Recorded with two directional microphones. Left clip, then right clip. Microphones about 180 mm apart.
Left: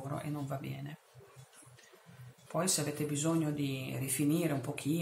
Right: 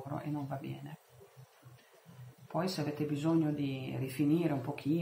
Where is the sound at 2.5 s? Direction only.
30° left (ahead or behind).